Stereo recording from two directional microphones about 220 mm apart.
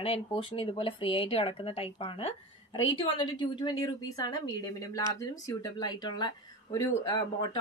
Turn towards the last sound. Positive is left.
turn(degrees=20)  # may be behind; listen again after turning